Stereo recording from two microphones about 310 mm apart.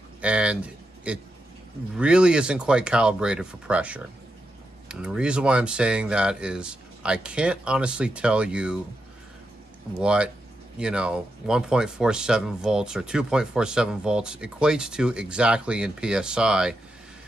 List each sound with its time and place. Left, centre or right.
0.2 s speech: centre
9.9 s speech: centre